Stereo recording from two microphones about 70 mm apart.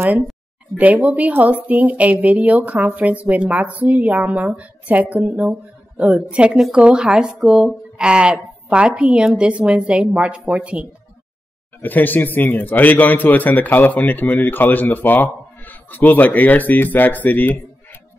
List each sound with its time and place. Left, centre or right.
0.7 s speech: right
11.8 s a man's voice: left